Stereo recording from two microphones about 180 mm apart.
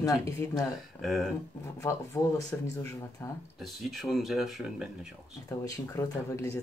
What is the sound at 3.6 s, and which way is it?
Speech, centre (ahead or behind).